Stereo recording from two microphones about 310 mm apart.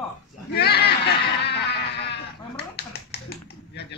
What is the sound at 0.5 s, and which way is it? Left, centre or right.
Goat, left.